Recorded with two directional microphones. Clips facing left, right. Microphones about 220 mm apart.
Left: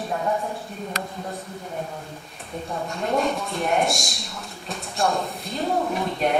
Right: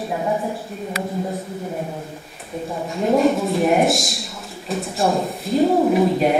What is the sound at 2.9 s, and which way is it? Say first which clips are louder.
A man's voice: right 8 dB; centre (ahead or behind).